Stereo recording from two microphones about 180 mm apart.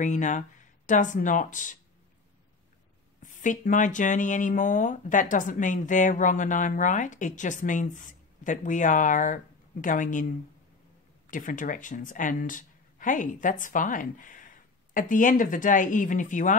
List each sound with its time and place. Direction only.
0.0 s speech: 45° left (ahead or behind)
3.2 s speech: 45° left (ahead or behind)
11.2 s speech: 45° left (ahead or behind)